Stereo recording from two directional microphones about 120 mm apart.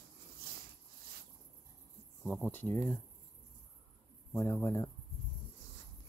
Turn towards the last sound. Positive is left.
turn(degrees=25)  # may be behind; listen again after turning